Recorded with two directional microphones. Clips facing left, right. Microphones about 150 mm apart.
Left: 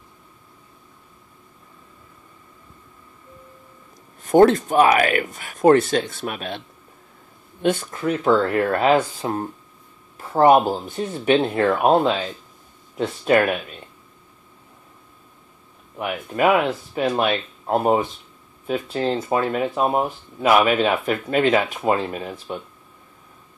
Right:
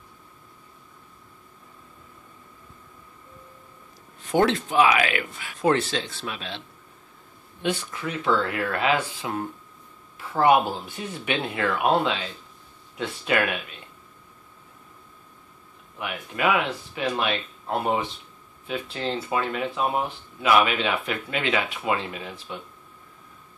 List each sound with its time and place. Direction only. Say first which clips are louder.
4.2 s speech: left 8 dB; 45° left (ahead or behind)
7.6 s speech: left 7 dB; 50° left (ahead or behind)
16.0 s speech: left 6 dB; 45° left (ahead or behind)